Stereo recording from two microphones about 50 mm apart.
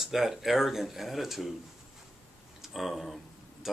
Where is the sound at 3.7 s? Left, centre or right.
Centre.